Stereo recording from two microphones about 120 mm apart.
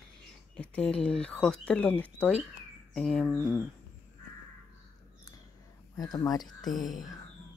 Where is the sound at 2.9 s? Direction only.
5° left (ahead or behind).